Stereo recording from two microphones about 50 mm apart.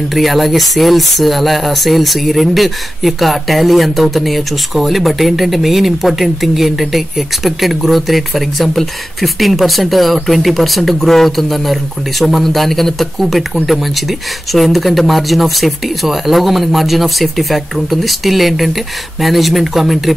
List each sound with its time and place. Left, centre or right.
0.1 s speech: centre